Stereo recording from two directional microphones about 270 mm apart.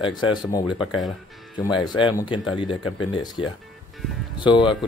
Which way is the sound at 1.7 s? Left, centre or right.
Centre.